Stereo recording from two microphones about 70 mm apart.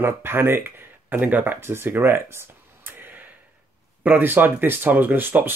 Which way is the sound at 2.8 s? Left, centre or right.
Right.